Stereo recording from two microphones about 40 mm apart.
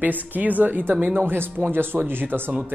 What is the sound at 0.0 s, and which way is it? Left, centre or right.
Speech, right.